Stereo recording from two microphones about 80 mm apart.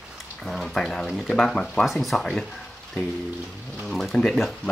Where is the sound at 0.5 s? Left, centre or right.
Centre.